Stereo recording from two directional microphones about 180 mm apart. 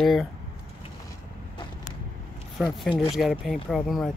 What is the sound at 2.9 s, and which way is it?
Speech, 30° left (ahead or behind).